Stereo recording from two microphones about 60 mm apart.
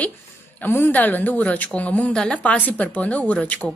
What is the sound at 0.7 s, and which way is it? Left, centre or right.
Speech, left.